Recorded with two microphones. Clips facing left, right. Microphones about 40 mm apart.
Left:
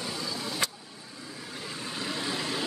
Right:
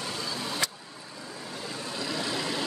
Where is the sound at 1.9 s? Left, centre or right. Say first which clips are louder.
Right 1 dB; left.